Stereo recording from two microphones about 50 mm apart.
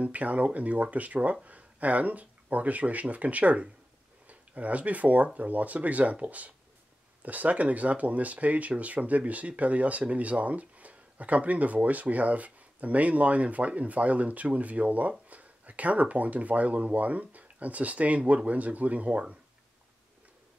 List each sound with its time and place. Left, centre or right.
0.0 s speech: right